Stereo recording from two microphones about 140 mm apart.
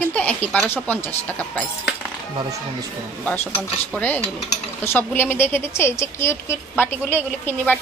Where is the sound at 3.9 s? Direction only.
10° left (ahead or behind).